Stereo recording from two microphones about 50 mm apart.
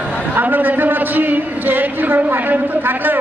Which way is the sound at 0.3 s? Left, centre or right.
Right.